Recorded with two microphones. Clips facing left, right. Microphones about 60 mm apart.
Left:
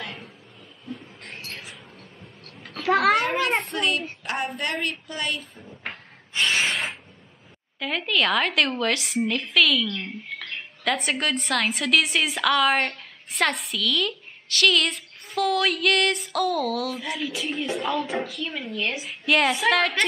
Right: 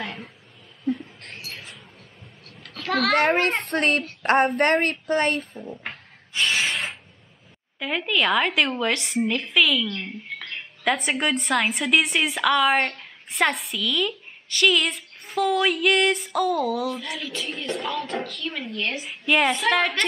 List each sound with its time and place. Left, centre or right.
0.9 s rodents: centre
2.6 s a sound: centre
3.2 s a child's voice: right
3.4 s a child's voice: left
3.7 s a woman's voice: right
6.4 s a sound: centre
7.8 s a woman's voice: centre
10.4 s a sound: centre
11.1 s a woman's voice: centre
17.0 s a woman's voice: centre
19.0 s a woman's voice: centre